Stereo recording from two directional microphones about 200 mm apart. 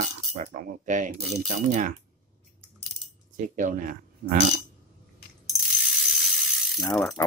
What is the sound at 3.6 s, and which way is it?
Speech, 40° right (ahead or behind).